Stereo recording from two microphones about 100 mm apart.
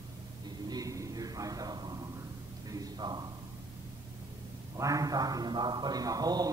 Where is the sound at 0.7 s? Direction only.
35° right (ahead or behind).